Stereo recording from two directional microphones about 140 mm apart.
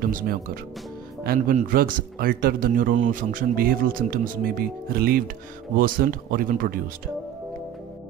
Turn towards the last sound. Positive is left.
turn(degrees=-90)